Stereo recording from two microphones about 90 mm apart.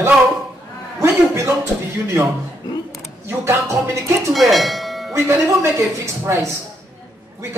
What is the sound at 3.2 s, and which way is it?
Speech, 30° right (ahead or behind).